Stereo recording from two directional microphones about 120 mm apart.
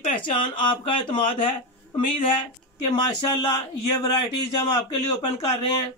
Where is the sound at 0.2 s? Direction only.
45° left (ahead or behind).